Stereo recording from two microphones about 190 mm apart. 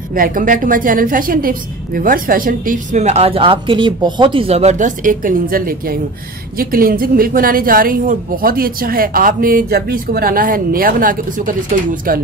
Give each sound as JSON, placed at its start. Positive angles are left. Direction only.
{"t": 0.1, "sound": "a woman's voice", "side_deg": -45}